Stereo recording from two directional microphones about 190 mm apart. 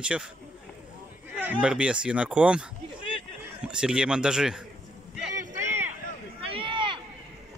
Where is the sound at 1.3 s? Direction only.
5° right (ahead or behind).